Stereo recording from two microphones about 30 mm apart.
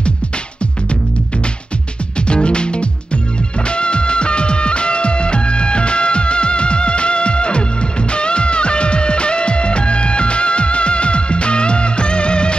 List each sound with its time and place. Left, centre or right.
2.2 s music: left